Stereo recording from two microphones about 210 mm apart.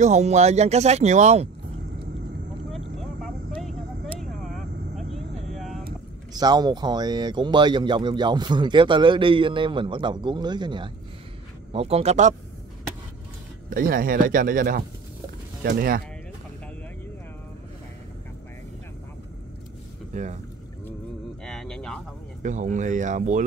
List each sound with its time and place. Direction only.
0.0 s speech: 35° right (ahead or behind)
3.0 s vehicle: centre (ahead or behind)
6.3 s speech: 20° right (ahead or behind)
13.7 s speech: 40° right (ahead or behind)
20.1 s speech: 35° right (ahead or behind)
21.5 s a sound: 5° left (ahead or behind)
22.4 s speech: 35° right (ahead or behind)